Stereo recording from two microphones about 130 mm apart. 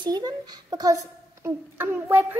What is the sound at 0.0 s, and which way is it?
Speech, 30° right (ahead or behind).